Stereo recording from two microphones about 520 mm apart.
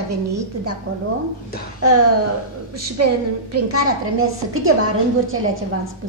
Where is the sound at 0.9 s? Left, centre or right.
Right.